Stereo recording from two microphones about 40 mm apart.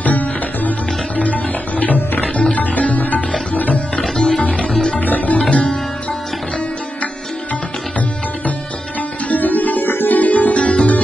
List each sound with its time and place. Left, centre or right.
0.0 s music: left
2.2 s music: left
2.5 s music: left
4.0 s music: centre
4.4 s music: left
5.0 s music: left
9.3 s music: left